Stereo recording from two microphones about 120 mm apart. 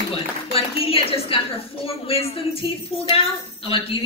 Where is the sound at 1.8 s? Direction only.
55° left (ahead or behind).